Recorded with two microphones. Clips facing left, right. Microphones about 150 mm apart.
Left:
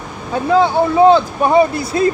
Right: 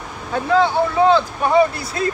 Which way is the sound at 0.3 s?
15° left (ahead or behind).